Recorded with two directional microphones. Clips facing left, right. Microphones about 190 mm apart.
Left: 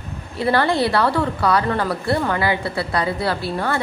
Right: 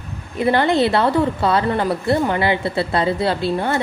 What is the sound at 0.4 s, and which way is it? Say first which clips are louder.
A woman's voice: right 2 dB; 20° right (ahead or behind).